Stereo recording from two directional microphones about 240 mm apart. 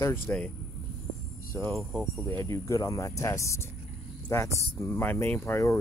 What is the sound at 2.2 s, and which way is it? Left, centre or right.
Speech, centre.